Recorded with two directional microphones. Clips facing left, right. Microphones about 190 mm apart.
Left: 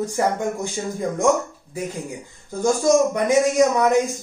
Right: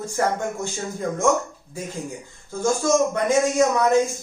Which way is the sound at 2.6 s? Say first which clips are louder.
Left 3 dB; 15° left (ahead or behind).